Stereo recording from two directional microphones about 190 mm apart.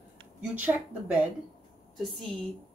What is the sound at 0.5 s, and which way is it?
Speech, 10° right (ahead or behind).